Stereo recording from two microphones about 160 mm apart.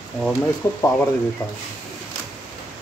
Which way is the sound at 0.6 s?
20° left (ahead or behind).